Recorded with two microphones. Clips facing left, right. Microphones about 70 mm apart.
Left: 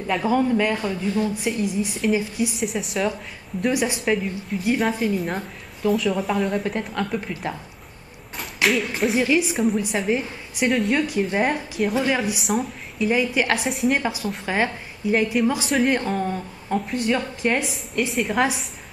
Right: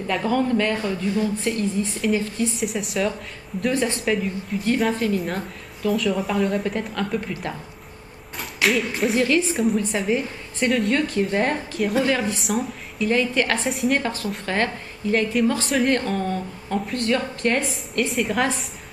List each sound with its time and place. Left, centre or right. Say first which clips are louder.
0.0 s a woman's voice: left 1 dB; centre
2.6 s a woman's voice: even; centre
3.7 s a woman's voice: right 2 dB; centre
4.0 s a woman's voice: even; centre
9.2 s a woman's voice: even; centre
13.1 s a woman's voice: even; centre
13.7 s a woman's voice: even; centre